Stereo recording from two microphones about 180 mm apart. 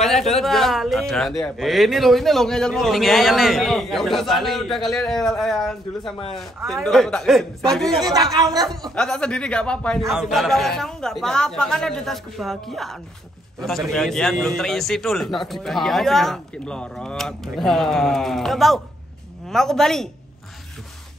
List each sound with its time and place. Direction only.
0.0 s speech: centre (ahead or behind)
8.1 s speech: 20° right (ahead or behind)
8.9 s speech: 5° left (ahead or behind)